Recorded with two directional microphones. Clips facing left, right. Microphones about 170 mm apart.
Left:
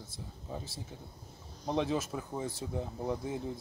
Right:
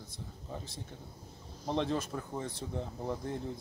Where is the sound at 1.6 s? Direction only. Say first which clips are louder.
Left 1 dB; 5° left (ahead or behind).